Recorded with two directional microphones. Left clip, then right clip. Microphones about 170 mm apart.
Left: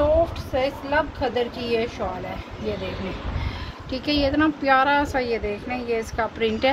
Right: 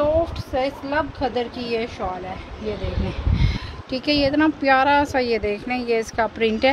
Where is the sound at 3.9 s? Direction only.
35° right (ahead or behind).